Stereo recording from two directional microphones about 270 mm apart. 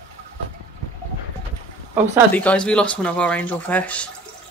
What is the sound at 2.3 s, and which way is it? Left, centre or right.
Speech, centre.